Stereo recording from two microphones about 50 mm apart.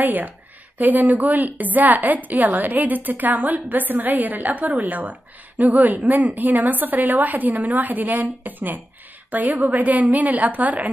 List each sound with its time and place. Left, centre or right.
0.0 s a woman's voice: right